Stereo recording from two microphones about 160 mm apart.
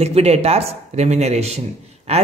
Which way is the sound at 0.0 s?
40° right (ahead or behind).